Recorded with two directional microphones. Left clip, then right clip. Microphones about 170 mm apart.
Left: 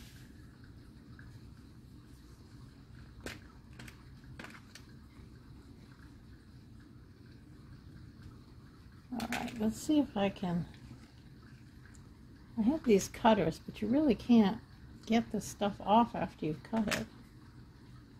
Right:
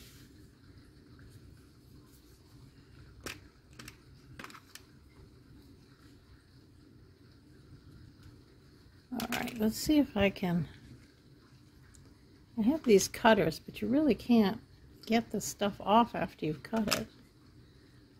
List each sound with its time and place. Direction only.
9.1 s speech: 45° right (ahead or behind)
12.5 s a woman's voice: 25° right (ahead or behind)